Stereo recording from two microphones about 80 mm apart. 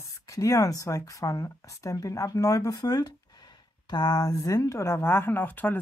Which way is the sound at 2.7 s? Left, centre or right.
Left.